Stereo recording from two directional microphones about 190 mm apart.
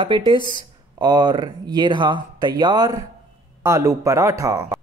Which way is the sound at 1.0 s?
20° right (ahead or behind).